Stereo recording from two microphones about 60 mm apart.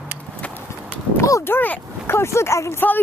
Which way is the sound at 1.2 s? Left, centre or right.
Left.